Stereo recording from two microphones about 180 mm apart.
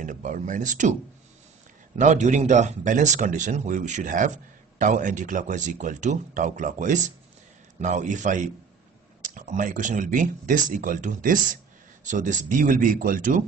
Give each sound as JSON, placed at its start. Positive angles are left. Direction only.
{"t": 0.0, "sound": "speech", "side_deg": -45}
{"t": 2.0, "sound": "speech", "side_deg": -40}